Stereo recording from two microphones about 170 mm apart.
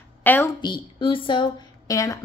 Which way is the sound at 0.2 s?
10° left (ahead or behind).